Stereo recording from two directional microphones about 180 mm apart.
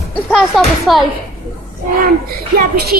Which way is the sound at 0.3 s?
Centre (ahead or behind).